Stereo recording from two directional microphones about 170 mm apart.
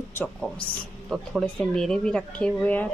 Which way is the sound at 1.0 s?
5° right (ahead or behind).